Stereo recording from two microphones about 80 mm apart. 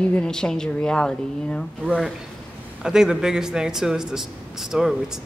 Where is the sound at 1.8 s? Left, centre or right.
Centre.